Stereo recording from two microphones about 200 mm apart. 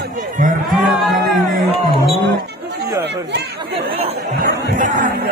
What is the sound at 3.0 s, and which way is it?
Speech, 55° right (ahead or behind).